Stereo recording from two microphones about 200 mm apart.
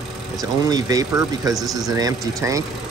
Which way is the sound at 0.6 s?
20° right (ahead or behind).